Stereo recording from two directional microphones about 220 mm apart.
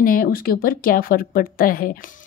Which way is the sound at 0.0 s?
40° left (ahead or behind).